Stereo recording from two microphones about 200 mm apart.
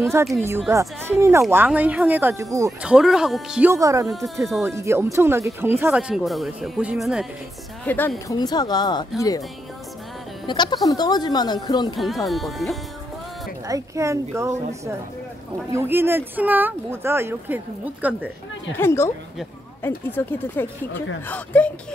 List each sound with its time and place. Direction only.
0.2 s speech: 10° right (ahead or behind)
2.8 s speech: 5° right (ahead or behind)
3.7 s speech: 15° right (ahead or behind)
4.1 s speech: centre (ahead or behind)
4.6 s speech: 15° right (ahead or behind)
7.8 s speech: 10° left (ahead or behind)
8.4 s speech: 20° left (ahead or behind)
10.4 s speech: 20° left (ahead or behind)
12.3 s speech: centre (ahead or behind)
13.7 s speech: 15° right (ahead or behind)
15.7 s speech: 10° right (ahead or behind)
18.8 s speech: 10° left (ahead or behind)